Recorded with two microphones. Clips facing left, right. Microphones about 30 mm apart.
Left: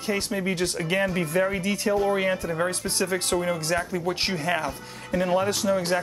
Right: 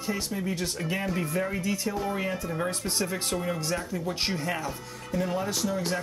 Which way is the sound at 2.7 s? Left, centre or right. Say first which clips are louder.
Left 4 dB; left.